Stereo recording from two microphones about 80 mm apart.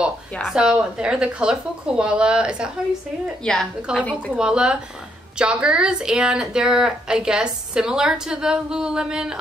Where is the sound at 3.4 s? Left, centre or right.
Centre.